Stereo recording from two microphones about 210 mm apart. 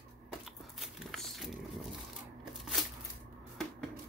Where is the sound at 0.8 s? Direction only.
Centre (ahead or behind).